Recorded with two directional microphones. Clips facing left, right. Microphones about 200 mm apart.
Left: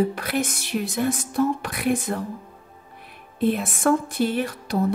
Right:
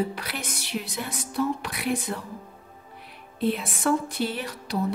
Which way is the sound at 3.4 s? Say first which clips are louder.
Left 4 dB; 50° left (ahead or behind).